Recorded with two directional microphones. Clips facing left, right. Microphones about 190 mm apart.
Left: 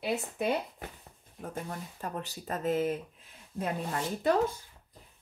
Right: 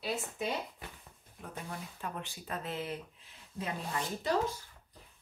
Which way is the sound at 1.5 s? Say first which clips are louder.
Left 4 dB; 40° left (ahead or behind).